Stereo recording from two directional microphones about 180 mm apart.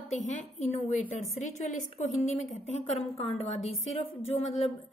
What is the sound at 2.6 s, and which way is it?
Speech, 35° left (ahead or behind).